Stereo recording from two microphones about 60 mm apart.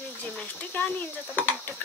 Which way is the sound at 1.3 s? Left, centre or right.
Left.